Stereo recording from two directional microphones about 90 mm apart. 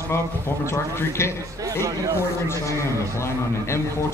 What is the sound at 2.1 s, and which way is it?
A man's voice, 30° left (ahead or behind).